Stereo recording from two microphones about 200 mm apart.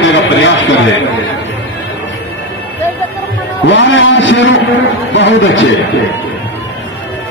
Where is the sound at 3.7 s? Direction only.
65° left (ahead or behind).